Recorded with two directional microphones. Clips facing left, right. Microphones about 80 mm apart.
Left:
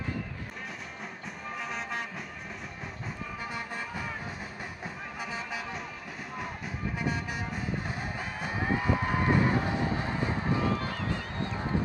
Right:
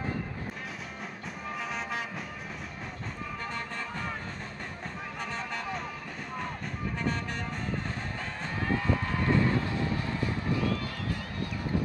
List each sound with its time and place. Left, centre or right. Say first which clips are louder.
1.7 s vehicle: even; centre
3.5 s music: even; centre
5.2 s music: right 1 dB; centre
8.4 s a sound: left 1 dB; centre